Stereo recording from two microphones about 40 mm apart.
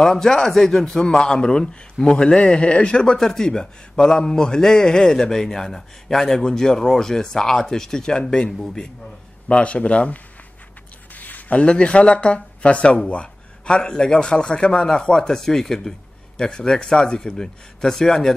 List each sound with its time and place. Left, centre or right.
0.0 s a man's voice: centre
3.2 s a man's voice: centre
9.6 s speech: left
11.1 s a sound: left
11.6 s a man's voice: left; by 18.3 s centre